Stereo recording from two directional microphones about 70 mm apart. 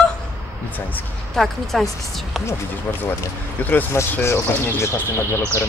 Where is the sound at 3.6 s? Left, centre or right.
Left.